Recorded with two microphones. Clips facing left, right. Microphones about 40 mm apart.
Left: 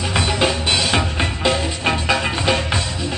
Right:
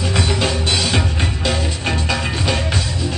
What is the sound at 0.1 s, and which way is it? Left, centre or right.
Music, centre.